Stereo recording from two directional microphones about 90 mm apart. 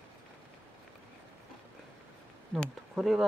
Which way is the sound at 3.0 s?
Centre (ahead or behind).